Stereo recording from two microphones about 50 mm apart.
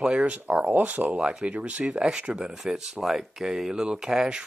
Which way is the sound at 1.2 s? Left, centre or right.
Centre.